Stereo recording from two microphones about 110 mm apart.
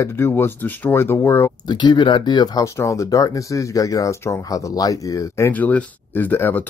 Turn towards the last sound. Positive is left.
turn(degrees=15)  # may be behind; listen again after turning